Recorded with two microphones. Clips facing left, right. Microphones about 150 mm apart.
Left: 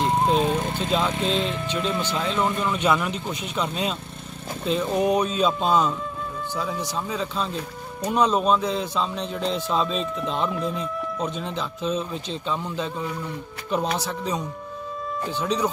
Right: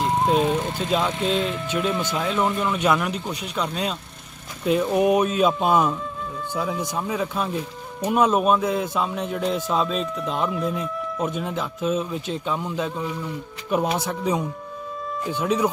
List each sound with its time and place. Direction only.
0.0 s speech: 5° right (ahead or behind)